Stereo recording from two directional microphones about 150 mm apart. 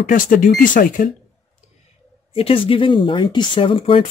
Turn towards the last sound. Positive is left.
turn(degrees=35)  # may be behind; listen again after turning